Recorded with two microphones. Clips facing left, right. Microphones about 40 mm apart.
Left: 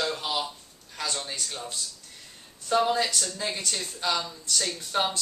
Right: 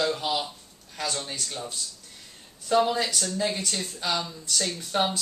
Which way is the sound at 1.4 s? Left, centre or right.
Centre.